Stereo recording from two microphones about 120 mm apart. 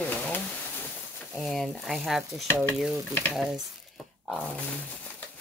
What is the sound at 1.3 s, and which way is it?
Speech, centre (ahead or behind).